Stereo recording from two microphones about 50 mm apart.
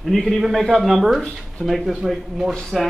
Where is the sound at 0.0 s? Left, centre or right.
Centre.